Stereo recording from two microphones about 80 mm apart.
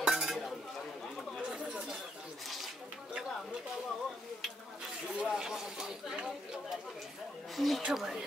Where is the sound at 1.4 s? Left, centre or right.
Centre.